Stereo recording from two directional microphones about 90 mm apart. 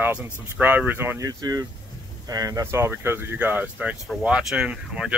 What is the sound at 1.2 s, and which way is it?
Speech, 45° right (ahead or behind).